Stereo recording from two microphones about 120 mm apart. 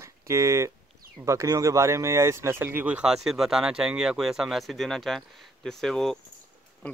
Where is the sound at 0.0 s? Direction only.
25° right (ahead or behind).